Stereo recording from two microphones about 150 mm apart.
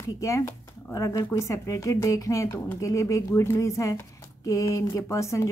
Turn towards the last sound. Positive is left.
turn(degrees=20)  # may be behind; listen again after turning